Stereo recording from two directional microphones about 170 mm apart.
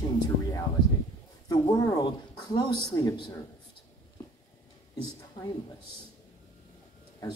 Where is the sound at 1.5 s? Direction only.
20° left (ahead or behind).